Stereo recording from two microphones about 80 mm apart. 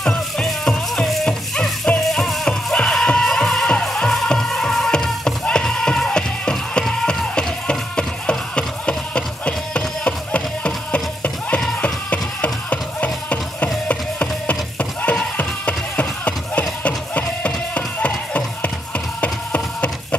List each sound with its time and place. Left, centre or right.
0.0 s music: centre
19.2 s wood: centre